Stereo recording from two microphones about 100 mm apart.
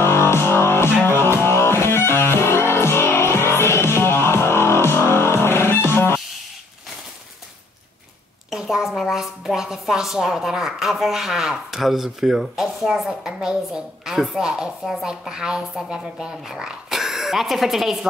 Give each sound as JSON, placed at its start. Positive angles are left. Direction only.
{"t": 0.0, "sound": "music", "side_deg": 25}
{"t": 8.5, "sound": "a woman's voice", "side_deg": -5}